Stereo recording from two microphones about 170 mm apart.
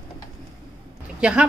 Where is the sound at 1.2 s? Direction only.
5° right (ahead or behind).